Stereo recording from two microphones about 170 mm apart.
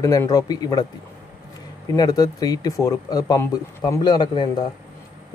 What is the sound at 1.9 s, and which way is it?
Speech, 25° left (ahead or behind).